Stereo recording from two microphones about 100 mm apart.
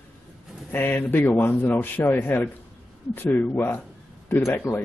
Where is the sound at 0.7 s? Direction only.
20° left (ahead or behind).